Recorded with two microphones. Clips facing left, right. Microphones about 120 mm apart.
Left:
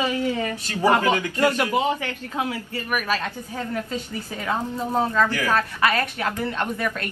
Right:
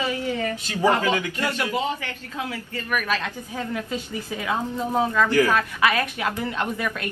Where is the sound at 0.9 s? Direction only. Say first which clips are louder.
Left 2 dB; 20° left (ahead or behind).